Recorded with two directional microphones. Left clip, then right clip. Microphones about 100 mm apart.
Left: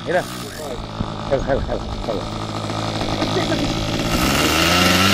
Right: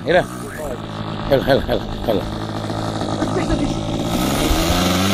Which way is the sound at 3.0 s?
20° right (ahead or behind).